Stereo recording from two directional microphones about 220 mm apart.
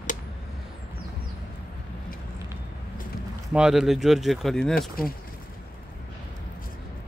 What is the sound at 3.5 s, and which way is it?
Speech, centre (ahead or behind).